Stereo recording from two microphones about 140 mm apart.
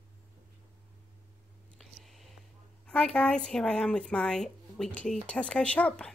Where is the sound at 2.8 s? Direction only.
5° left (ahead or behind).